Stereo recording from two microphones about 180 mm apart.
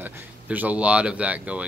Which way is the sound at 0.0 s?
10° right (ahead or behind).